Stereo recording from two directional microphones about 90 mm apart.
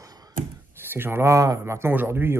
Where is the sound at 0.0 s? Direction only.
45° right (ahead or behind).